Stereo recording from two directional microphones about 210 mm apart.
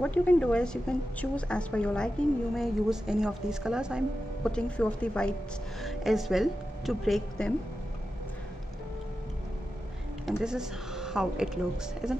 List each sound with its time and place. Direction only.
0.0 s a woman's voice: 5° left (ahead or behind)
10.4 s a woman's voice: 5° right (ahead or behind)